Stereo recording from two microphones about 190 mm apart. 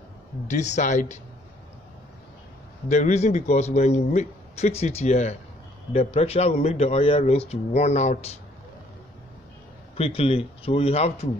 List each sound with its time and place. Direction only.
0.5 s a man's voice: 40° left (ahead or behind)
2.9 s a man's voice: 35° left (ahead or behind)
9.9 s a man's voice: 30° left (ahead or behind)